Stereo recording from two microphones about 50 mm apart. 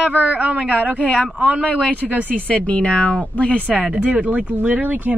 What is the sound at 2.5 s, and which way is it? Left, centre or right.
Speech, left.